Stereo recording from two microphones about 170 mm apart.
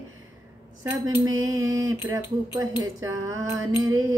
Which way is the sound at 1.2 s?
20° right (ahead or behind).